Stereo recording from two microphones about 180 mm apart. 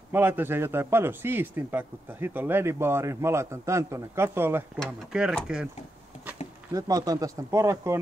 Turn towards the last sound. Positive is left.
turn(degrees=-15)  # may be behind; listen again after turning